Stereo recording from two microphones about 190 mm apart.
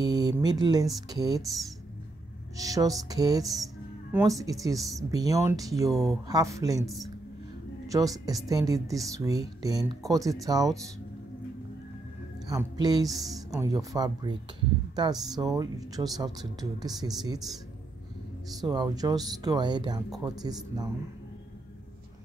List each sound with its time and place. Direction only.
0.0 s a sound: 20° right (ahead or behind)
0.4 s speech: 20° right (ahead or behind)
2.5 s speech: 20° right (ahead or behind)
7.9 s speech: 20° right (ahead or behind)
12.4 s speech: 20° right (ahead or behind)
13.1 s speech: centre (ahead or behind)
13.6 s speech: 20° right (ahead or behind)
18.6 s speech: 20° right (ahead or behind)